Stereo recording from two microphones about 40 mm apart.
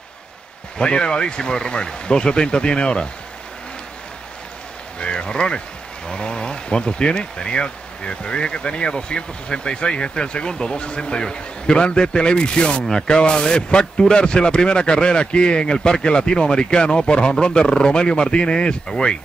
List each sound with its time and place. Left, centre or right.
0.7 s speech: left
4.9 s a sound: left
6.0 s speech: left